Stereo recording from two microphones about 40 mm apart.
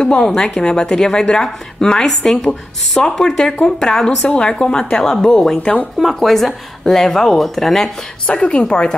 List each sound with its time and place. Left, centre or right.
0.0 s a woman's voice: left
4.9 s speech: centre
8.3 s a woman's voice: left